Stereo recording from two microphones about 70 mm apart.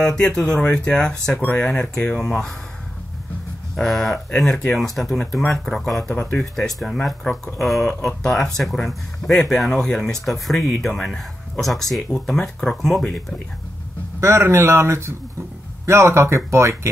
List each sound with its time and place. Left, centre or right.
0.0 s speech: centre
3.7 s speech: centre
14.2 s speech: right